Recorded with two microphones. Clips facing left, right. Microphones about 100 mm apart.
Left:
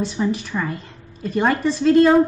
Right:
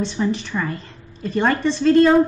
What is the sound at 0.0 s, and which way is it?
A woman's voice, 5° left (ahead or behind).